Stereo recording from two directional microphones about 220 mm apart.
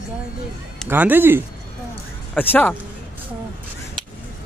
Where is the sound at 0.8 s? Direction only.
10° right (ahead or behind).